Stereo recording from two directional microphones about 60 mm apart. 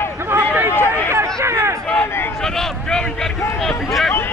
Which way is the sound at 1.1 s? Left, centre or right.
Right.